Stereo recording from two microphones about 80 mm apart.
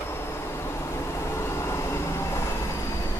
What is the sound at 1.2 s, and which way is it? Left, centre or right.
Vehicle, left.